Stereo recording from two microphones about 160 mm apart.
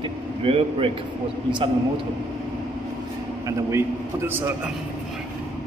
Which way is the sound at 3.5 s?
20° right (ahead or behind).